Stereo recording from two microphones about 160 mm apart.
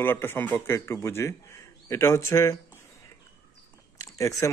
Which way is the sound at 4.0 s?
20° left (ahead or behind).